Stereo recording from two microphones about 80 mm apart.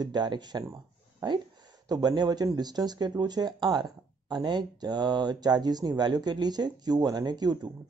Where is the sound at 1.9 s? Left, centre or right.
Right.